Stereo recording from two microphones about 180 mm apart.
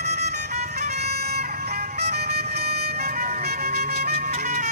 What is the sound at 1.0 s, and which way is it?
Bagpipes, 60° right (ahead or behind).